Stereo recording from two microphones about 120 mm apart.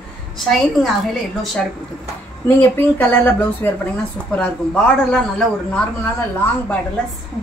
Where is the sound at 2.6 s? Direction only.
15° left (ahead or behind).